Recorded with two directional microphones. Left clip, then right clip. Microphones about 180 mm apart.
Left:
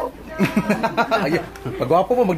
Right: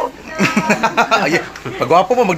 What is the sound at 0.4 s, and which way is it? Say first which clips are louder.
Speech: right 6 dB; 20° right (ahead or behind).